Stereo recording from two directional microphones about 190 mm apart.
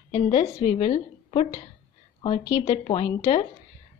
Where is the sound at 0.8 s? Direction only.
30° left (ahead or behind).